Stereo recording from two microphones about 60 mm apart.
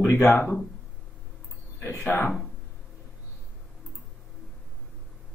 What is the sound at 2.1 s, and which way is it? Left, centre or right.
Speech, left.